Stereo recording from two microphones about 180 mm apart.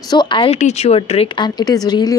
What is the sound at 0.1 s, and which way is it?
Speech, 25° left (ahead or behind).